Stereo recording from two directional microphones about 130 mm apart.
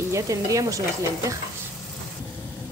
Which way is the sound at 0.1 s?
25° right (ahead or behind).